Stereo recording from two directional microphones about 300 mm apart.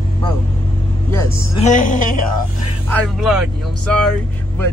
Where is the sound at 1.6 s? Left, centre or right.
Left.